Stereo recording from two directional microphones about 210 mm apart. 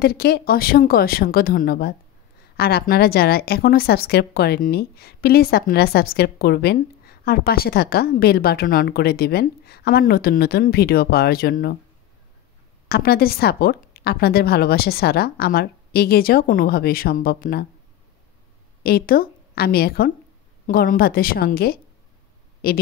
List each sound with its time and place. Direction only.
0.0 s a woman's voice: 45° left (ahead or behind)
12.8 s a woman's voice: 50° left (ahead or behind)
18.8 s a woman's voice: 45° left (ahead or behind)